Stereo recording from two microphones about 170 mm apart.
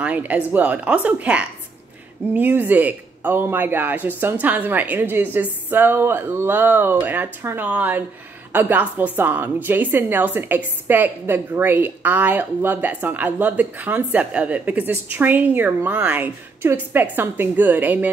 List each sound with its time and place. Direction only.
0.0 s a woman's voice: 10° right (ahead or behind)